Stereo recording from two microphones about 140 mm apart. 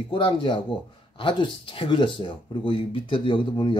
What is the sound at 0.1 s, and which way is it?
Speech, 40° left (ahead or behind).